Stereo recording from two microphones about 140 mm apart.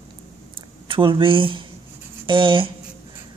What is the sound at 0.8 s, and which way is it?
Speech, 35° right (ahead or behind).